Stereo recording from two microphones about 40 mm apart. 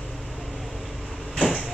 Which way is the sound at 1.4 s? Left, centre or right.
Centre.